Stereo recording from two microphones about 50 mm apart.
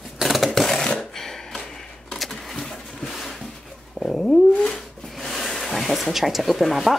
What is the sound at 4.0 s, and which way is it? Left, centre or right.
Dog, centre.